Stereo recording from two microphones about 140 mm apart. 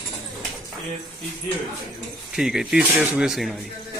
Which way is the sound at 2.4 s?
5° right (ahead or behind).